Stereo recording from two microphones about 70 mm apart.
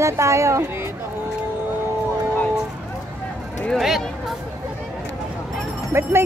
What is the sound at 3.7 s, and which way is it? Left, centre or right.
Speech, centre.